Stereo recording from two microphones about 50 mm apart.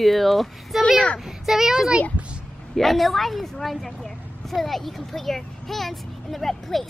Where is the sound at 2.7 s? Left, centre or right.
Centre.